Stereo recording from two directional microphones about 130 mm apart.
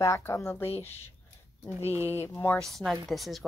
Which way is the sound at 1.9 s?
20° right (ahead or behind).